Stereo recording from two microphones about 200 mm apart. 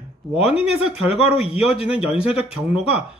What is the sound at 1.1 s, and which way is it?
Speech, 30° left (ahead or behind).